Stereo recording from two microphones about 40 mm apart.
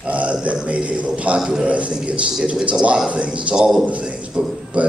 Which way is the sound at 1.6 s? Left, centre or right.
Right.